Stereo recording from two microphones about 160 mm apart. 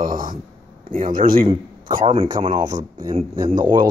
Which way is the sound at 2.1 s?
35° right (ahead or behind).